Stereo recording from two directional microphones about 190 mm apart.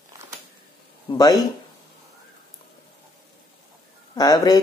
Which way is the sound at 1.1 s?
20° left (ahead or behind).